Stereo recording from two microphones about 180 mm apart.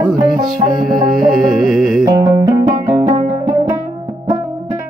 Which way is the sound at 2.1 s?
15° right (ahead or behind).